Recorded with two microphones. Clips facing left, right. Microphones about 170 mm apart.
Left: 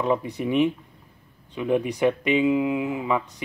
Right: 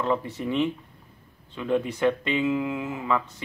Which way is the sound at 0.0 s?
15° left (ahead or behind).